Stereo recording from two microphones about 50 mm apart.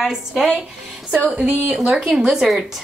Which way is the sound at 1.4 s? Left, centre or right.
Right.